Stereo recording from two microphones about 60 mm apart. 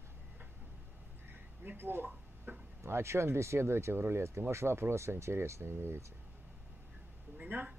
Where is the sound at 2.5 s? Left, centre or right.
Right.